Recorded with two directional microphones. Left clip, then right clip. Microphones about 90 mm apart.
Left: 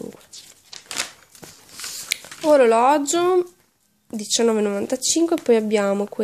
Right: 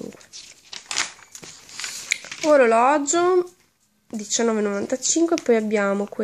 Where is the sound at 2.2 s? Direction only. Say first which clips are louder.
Left 1 dB; 10° left (ahead or behind).